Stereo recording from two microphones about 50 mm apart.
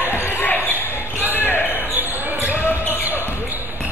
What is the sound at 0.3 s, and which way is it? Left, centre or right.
Basketball bounce, left.